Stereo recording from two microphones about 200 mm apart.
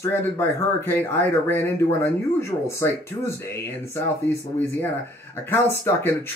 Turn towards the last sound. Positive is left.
turn(degrees=10)  # may be behind; listen again after turning